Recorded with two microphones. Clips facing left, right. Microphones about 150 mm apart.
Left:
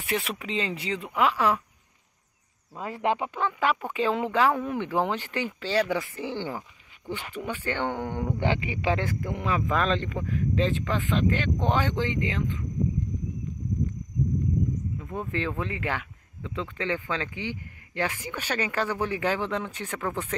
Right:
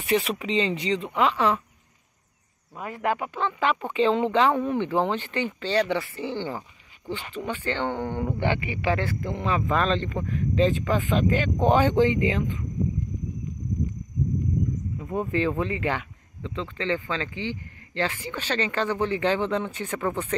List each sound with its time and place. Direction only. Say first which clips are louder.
0.0 s speech: right 6 dB; centre (ahead or behind)
2.8 s speech: even; 25° left (ahead or behind)
3.3 s speech: right 1 dB; 10° left (ahead or behind); by 12.5 s 15° right (ahead or behind)
15.0 s speech: right 8 dB; 10° right (ahead or behind)